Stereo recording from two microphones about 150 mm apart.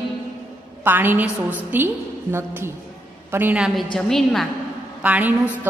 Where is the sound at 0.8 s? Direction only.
15° right (ahead or behind); by 4.5 s 5° left (ahead or behind).